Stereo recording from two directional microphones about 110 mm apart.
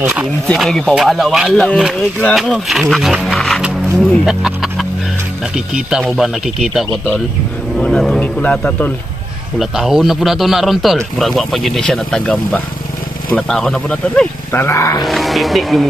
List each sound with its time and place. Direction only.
0.5 s speech: 5° left (ahead or behind)
3.6 s music: centre (ahead or behind)
5.8 s speech: 5° right (ahead or behind); by 8.9 s 15° left (ahead or behind)
9.6 s speech: 5° right (ahead or behind)
14.5 s speech: 20° left (ahead or behind)
15.0 s speech: centre (ahead or behind)